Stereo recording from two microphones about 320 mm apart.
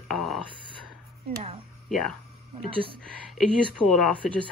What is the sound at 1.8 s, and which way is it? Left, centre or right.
Speech, centre.